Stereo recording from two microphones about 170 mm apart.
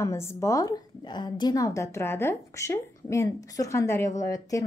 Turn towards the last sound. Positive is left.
turn(degrees=20)  # may be behind; listen again after turning